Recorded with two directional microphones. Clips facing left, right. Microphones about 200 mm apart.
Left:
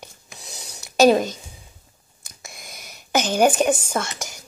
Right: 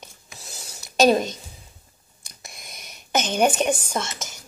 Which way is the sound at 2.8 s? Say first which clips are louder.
Left 3 dB; 10° left (ahead or behind).